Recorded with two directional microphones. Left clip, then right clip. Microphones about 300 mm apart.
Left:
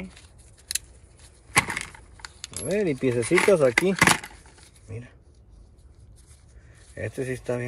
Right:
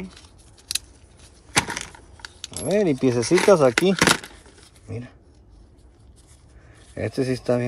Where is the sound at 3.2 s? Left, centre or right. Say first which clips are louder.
Right 3 dB; centre.